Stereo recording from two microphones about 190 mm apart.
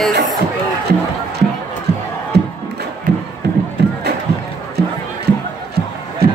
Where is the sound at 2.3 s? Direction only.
60° right (ahead or behind).